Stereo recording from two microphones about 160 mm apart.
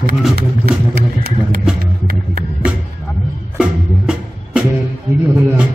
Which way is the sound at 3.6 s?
5° right (ahead or behind).